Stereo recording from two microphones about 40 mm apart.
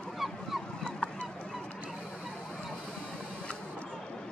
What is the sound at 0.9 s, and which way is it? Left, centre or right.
Goose, left.